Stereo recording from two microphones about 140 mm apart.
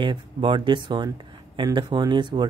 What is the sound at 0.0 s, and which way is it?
Speech, 35° right (ahead or behind).